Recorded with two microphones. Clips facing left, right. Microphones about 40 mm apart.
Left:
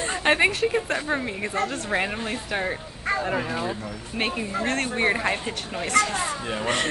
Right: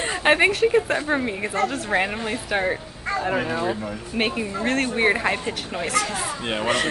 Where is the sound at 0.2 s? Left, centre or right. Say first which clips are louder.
Right 3 dB; centre.